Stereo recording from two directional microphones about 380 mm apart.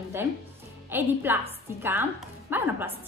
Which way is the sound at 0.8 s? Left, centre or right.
Centre.